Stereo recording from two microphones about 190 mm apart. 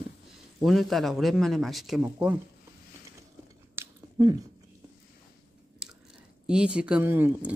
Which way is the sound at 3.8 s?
10° right (ahead or behind).